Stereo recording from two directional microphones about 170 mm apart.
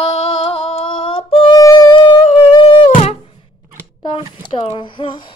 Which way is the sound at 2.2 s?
40° left (ahead or behind).